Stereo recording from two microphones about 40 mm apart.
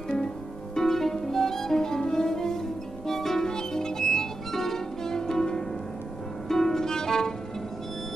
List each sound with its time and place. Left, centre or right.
0.7 s music: centre